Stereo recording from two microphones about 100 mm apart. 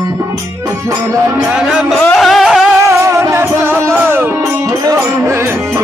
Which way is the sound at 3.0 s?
30° right (ahead or behind).